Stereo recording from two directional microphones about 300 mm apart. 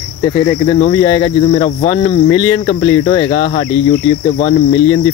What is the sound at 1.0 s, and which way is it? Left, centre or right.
Cricket, centre.